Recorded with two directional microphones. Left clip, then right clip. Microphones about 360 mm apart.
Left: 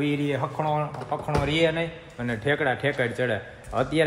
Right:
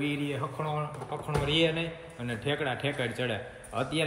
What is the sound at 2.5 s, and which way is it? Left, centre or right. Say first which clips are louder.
Speech: left 7 dB; left.